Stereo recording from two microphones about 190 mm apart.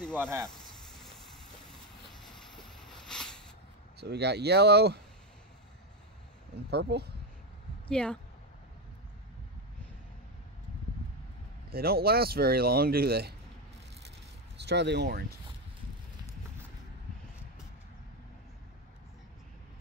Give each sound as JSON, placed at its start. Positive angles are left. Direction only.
{"t": 0.0, "sound": "a sound", "side_deg": 5}
{"t": 2.1, "sound": "a sound", "side_deg": 0}
{"t": 4.0, "sound": "speech", "side_deg": -60}
{"t": 6.7, "sound": "speech", "side_deg": -60}
{"t": 7.9, "sound": "speech", "side_deg": 5}
{"t": 11.7, "sound": "speech", "side_deg": -55}
{"t": 14.6, "sound": "speech", "side_deg": -65}